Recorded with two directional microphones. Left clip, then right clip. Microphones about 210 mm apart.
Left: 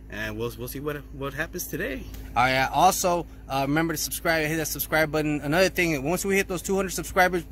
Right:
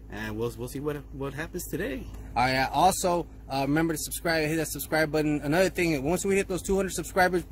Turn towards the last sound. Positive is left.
turn(degrees=5)  # may be behind; listen again after turning